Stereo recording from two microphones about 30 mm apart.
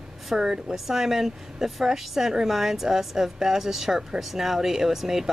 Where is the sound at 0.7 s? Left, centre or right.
Centre.